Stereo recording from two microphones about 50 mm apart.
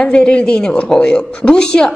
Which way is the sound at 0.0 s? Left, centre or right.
Left.